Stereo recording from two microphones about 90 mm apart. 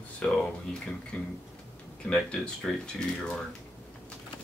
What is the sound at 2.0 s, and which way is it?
Speech, 10° left (ahead or behind).